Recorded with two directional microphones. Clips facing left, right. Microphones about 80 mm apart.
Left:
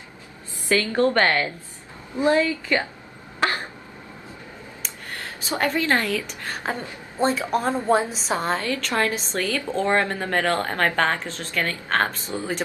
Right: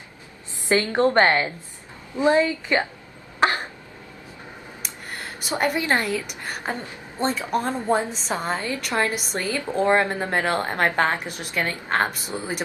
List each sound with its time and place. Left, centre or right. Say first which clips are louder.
0.7 s a woman's voice: right 1 dB; right
3.3 s cough: right 3 dB; right
5.1 s a woman's voice: even; centre
7.2 s a woman's voice: left 2 dB; centre
8.6 s a woman's voice: left 1 dB; centre